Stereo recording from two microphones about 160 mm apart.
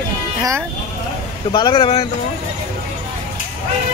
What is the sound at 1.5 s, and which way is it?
Speech, 30° left (ahead or behind).